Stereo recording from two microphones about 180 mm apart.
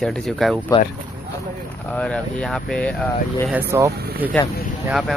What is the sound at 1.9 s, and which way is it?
Speech, 5° left (ahead or behind).